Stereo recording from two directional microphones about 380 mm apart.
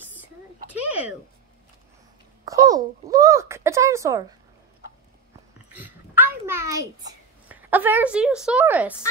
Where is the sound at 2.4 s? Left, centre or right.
Centre.